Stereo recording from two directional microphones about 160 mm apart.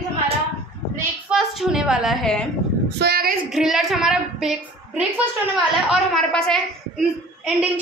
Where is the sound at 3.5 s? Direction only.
Centre (ahead or behind).